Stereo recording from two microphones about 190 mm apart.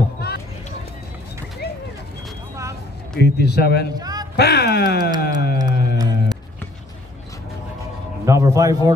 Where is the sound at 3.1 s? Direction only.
60° left (ahead or behind).